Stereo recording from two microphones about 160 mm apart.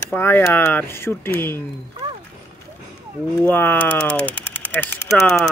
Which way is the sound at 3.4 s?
10° left (ahead or behind).